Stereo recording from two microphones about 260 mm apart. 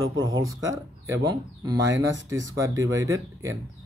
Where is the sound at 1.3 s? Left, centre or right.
Centre.